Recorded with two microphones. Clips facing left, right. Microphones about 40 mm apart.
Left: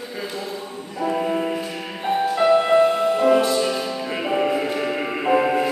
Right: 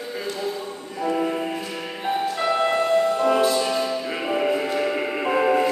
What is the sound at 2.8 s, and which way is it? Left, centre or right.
Music, left.